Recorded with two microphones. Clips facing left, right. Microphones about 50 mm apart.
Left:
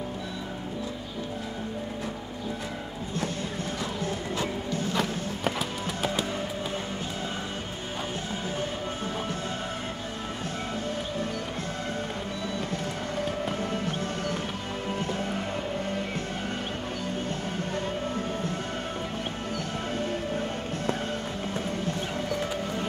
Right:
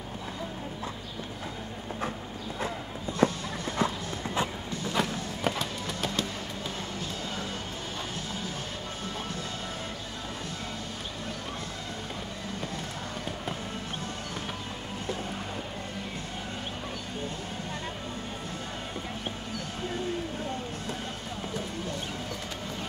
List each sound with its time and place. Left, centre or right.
3.2 s clip-clop: right
4.9 s music: centre